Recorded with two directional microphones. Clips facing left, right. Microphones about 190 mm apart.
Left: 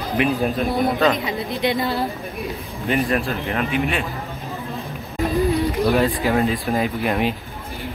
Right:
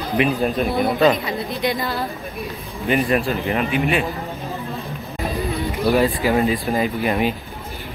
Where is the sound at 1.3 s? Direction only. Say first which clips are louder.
Even; 20° left (ahead or behind).